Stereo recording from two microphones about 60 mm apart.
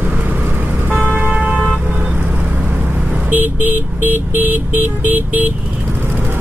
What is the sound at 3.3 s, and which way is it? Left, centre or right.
Vehicle, right.